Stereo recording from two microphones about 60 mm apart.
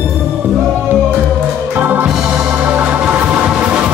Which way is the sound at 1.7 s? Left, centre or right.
Right.